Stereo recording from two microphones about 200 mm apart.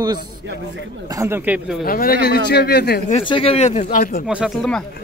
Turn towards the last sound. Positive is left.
turn(degrees=0)  # may be behind; listen again after turning